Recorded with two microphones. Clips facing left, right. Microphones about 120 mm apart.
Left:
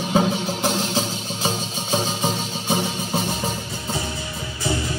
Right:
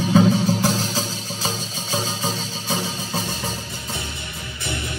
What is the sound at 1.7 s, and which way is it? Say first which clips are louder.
Music: left 3 dB; 15° left (ahead or behind).